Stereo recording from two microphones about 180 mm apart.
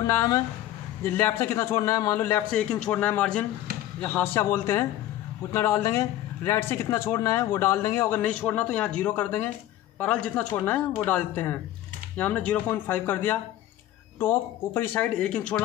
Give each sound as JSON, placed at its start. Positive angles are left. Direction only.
{"t": 0.0, "sound": "a man's voice", "side_deg": 15}